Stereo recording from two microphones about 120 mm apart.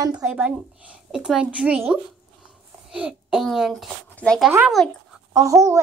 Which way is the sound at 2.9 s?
5° right (ahead or behind).